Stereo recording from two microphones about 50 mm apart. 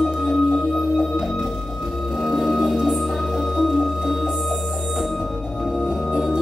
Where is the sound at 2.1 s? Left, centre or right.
Centre.